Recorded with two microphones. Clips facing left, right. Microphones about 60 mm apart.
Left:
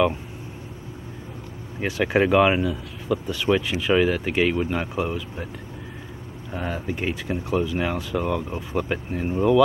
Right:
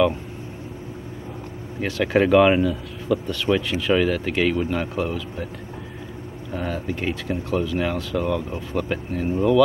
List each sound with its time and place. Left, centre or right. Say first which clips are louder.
1.8 s speech: right 1 dB; centre
6.5 s speech: right 1 dB; centre